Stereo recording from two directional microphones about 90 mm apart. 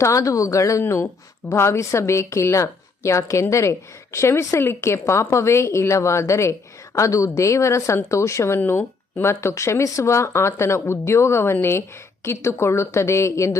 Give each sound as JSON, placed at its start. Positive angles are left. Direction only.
{"t": 0.0, "sound": "a woman's voice", "side_deg": 35}